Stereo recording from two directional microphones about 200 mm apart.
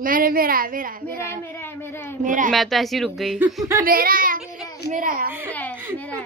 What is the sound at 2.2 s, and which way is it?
Speech, 40° right (ahead or behind).